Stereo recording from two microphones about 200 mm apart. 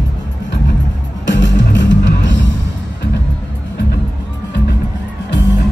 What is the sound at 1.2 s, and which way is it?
Music, 60° left (ahead or behind).